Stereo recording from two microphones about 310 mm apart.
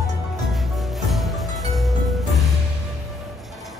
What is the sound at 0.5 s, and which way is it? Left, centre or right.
Music, centre.